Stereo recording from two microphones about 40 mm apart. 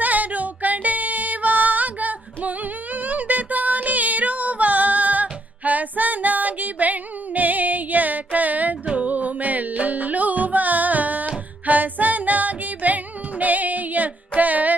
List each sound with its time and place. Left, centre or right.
0.0 s music: right